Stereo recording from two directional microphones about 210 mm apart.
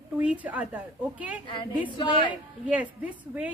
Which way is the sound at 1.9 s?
20° left (ahead or behind).